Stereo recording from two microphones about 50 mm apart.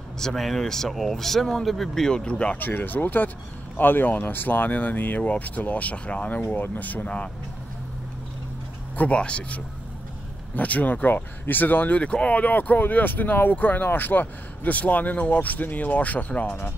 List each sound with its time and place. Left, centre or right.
0.2 s speech: centre
2.5 s speech: left
6.5 s speech: left
8.9 s speech: left
10.5 s speech: left